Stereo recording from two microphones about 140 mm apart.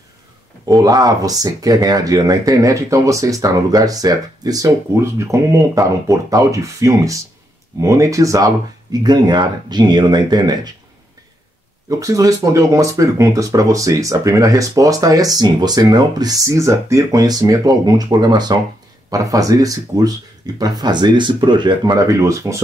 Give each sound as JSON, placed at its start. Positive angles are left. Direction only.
{"t": 0.7, "sound": "speech", "side_deg": -25}
{"t": 11.9, "sound": "speech", "side_deg": -25}